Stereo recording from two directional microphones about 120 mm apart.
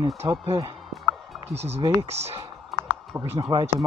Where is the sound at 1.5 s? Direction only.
65° right (ahead or behind).